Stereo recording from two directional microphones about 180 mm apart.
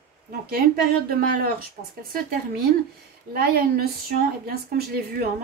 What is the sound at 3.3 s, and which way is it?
A woman's voice, 55° right (ahead or behind).